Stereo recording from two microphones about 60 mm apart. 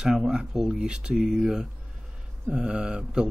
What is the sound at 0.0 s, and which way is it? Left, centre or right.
Speech, centre.